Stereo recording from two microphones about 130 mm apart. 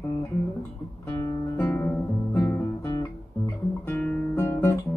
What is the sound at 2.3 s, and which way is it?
Music, 20° left (ahead or behind).